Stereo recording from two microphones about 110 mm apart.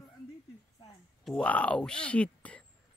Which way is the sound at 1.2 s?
10° left (ahead or behind).